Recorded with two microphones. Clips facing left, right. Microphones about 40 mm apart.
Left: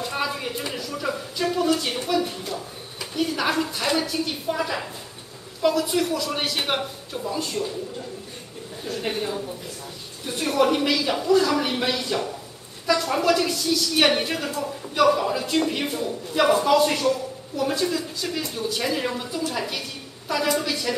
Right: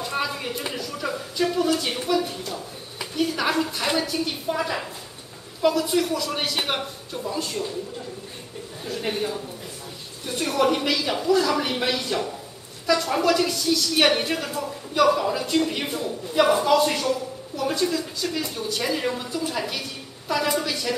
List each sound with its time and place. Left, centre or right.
0.0 s a sound: centre
3.2 s a woman's voice: centre
8.8 s a woman's voice: centre